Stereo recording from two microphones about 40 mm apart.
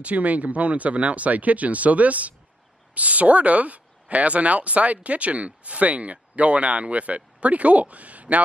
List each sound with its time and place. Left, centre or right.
0.0 s speech: right